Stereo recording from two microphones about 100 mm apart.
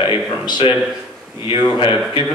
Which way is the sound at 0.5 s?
55° left (ahead or behind).